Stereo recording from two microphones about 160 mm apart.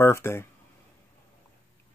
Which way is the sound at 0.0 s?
15° left (ahead or behind).